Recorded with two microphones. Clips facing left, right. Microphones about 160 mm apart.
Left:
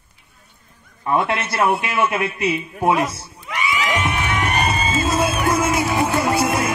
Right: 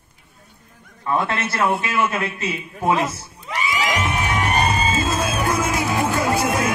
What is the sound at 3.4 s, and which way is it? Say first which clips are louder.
Crowd: even; 35° right (ahead or behind).